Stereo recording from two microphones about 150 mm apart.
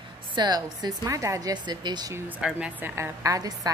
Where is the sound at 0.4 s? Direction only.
25° right (ahead or behind).